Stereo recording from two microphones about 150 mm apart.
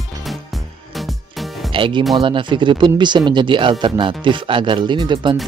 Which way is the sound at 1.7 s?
35° right (ahead or behind).